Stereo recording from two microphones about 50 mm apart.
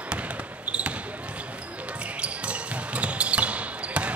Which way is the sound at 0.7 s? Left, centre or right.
Right.